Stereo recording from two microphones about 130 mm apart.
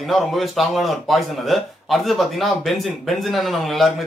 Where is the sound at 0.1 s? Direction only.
Centre (ahead or behind).